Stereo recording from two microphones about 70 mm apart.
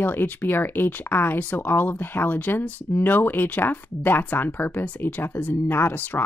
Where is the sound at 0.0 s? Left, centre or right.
Left.